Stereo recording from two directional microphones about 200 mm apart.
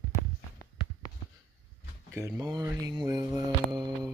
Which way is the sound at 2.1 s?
15° right (ahead or behind).